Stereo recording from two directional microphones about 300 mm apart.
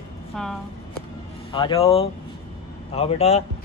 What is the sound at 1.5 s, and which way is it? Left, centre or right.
Speech, centre.